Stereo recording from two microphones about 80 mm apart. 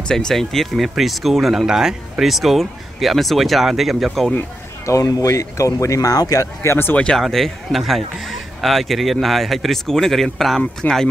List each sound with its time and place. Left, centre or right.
0.1 s speech: centre
4.8 s speech: left
7.0 s speech: centre
10.8 s speech: left